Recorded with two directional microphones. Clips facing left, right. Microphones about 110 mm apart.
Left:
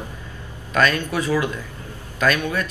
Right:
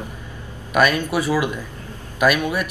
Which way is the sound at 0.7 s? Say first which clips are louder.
Right 2 dB; 15° right (ahead or behind).